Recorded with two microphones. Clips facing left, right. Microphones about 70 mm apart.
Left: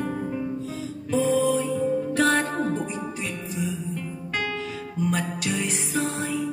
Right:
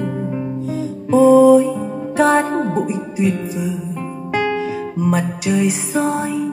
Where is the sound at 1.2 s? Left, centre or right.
Centre.